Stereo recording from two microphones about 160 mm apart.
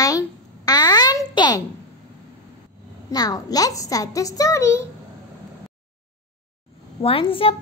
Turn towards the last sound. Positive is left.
turn(degrees=35)  # may be behind; listen again after turning